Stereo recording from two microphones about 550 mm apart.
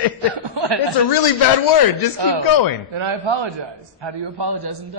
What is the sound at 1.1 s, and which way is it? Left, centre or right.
A man's voice, left.